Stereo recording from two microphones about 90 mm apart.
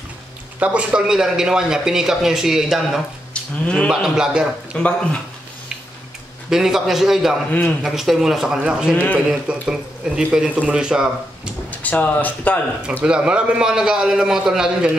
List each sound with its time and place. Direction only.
0.6 s speech: 10° right (ahead or behind)
3.6 s speech: 10° left (ahead or behind)
3.9 s speech: 5° right (ahead or behind)
4.7 s speech: 15° left (ahead or behind)
6.5 s a man's voice: 5° right (ahead or behind)
11.8 s speech: 15° left (ahead or behind)
13.0 s speech: 10° right (ahead or behind)